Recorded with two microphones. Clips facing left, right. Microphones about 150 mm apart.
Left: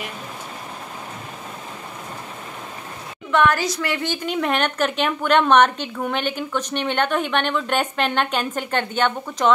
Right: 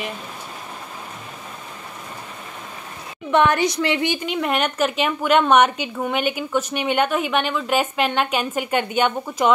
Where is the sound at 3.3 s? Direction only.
20° right (ahead or behind).